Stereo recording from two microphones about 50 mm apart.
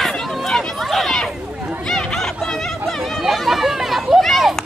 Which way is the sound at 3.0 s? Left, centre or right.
Centre.